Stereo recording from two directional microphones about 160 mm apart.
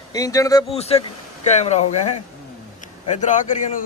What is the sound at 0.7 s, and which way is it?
A man's voice, 40° left (ahead or behind).